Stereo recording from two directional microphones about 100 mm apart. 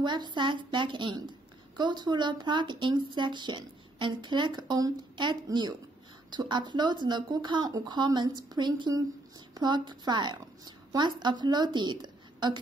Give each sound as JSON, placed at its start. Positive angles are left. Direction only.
{"t": 0.0, "sound": "a woman's voice", "side_deg": -50}